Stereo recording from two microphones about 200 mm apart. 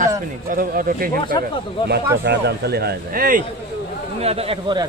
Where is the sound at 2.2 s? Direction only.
55° right (ahead or behind).